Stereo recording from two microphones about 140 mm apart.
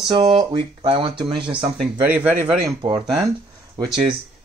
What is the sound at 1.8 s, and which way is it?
Speech, 10° right (ahead or behind).